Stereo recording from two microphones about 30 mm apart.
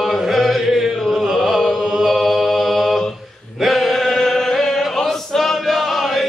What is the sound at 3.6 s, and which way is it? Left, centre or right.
Chant, centre.